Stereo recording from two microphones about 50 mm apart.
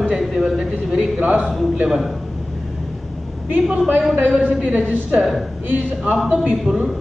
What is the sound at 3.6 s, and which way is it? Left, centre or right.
A woman's voice, right.